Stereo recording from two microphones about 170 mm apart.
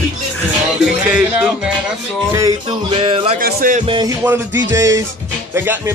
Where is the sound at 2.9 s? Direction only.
30° right (ahead or behind).